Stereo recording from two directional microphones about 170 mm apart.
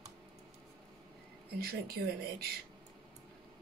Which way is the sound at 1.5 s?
65° right (ahead or behind).